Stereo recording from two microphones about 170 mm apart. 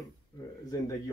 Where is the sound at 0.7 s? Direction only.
20° left (ahead or behind).